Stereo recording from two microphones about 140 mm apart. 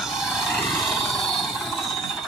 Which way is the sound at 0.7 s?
Centre (ahead or behind).